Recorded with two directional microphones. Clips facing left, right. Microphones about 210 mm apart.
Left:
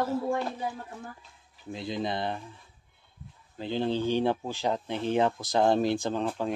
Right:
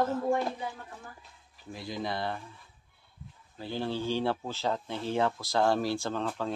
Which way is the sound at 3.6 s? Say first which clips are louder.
Left 5 dB; 20° left (ahead or behind).